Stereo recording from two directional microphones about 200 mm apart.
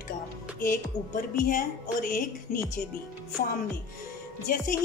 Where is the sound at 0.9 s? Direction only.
20° left (ahead or behind).